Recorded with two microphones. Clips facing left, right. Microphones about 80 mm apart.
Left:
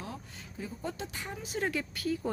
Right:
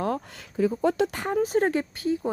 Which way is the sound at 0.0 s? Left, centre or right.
Right.